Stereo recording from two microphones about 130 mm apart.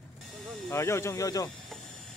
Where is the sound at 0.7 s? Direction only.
20° left (ahead or behind).